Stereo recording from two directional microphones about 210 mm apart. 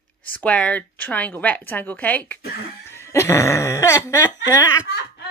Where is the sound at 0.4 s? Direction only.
5° left (ahead or behind).